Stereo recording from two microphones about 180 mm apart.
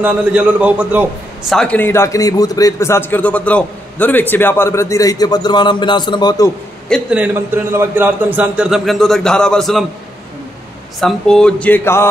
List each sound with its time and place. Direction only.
0.0 s a man's voice: 5° right (ahead or behind)
1.5 s a man's voice: 5° left (ahead or behind); by 6.5 s 20° left (ahead or behind)
6.9 s a man's voice: 5° right (ahead or behind)
11.0 s a man's voice: centre (ahead or behind)